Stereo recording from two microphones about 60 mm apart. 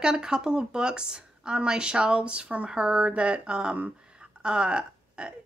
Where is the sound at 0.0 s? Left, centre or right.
Centre.